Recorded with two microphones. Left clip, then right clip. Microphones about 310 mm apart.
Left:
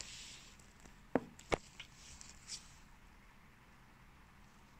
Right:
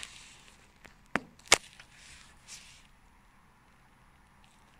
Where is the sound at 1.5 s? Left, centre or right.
Right.